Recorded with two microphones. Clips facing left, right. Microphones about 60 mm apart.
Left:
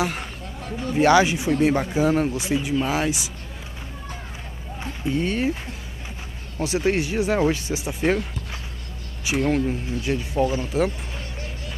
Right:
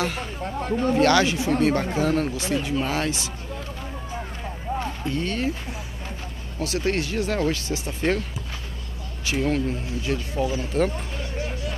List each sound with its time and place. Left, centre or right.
0.0 s speech: centre
0.4 s a sound: right
0.9 s speech: centre
5.0 s speech: centre
6.6 s speech: centre
9.5 s speech: centre